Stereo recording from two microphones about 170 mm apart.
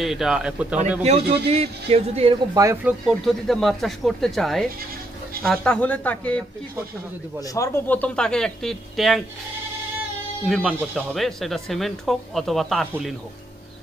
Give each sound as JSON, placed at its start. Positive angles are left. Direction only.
{"t": 0.0, "sound": "speech", "side_deg": 0}
{"t": 1.0, "sound": "a man's voice", "side_deg": -40}
{"t": 2.5, "sound": "speech", "side_deg": -20}
{"t": 2.8, "sound": "speech", "side_deg": -5}
{"t": 10.4, "sound": "speech", "side_deg": 0}